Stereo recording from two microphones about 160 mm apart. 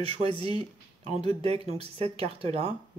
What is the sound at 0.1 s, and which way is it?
Speech, 35° right (ahead or behind).